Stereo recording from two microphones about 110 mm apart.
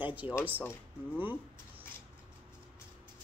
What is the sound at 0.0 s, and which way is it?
Speech, 15° right (ahead or behind).